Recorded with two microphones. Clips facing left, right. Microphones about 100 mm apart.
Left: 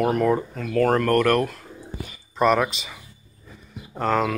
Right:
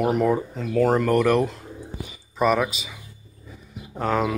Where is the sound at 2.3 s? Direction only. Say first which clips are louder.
Left 1 dB; 5° right (ahead or behind).